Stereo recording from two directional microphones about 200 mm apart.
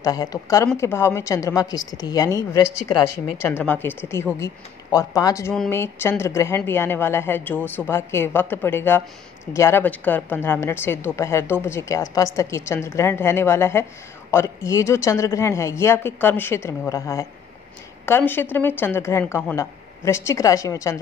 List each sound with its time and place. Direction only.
0.0 s a woman's voice: 20° left (ahead or behind)